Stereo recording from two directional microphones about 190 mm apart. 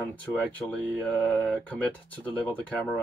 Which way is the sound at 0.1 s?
10° left (ahead or behind).